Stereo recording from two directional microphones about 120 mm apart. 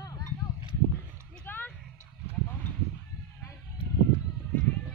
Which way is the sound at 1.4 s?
15° left (ahead or behind).